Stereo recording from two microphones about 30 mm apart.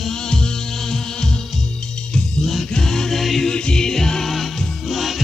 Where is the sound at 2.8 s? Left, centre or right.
Centre.